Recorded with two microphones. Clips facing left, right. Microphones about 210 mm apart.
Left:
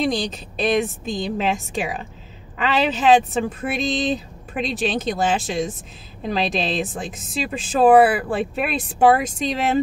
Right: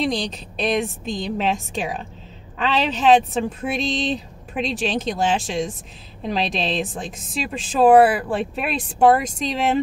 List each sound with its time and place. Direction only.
0.0 s speech: centre (ahead or behind)